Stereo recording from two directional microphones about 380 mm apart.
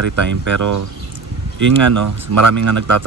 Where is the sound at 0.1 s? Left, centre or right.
Right.